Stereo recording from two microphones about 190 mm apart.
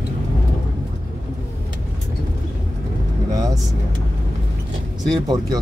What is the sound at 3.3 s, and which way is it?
Vehicle, 20° right (ahead or behind).